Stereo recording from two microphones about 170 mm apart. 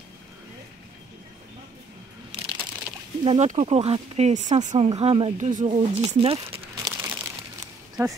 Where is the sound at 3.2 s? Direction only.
40° right (ahead or behind).